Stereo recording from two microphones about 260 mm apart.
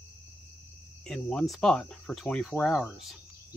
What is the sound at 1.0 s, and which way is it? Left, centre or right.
Speech, centre.